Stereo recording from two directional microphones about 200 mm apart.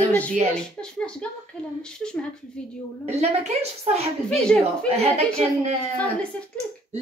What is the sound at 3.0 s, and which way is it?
A woman's voice, 30° right (ahead or behind).